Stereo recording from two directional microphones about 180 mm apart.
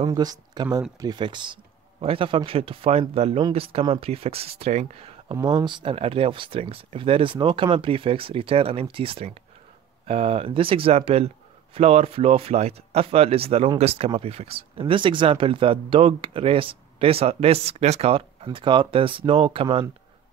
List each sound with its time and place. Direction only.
0.0 s speech: 20° right (ahead or behind)
5.4 s speech: 20° right (ahead or behind)